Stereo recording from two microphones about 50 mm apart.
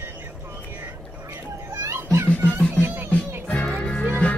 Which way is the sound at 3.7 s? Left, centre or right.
Left.